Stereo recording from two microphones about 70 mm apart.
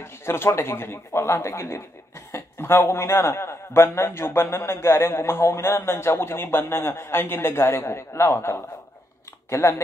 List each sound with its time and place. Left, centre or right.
0.0 s speech: left